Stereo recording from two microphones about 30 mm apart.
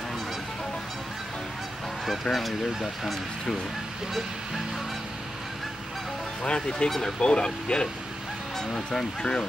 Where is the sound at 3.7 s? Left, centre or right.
Centre.